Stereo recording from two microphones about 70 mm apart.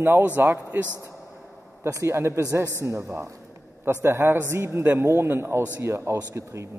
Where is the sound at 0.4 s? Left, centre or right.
Right.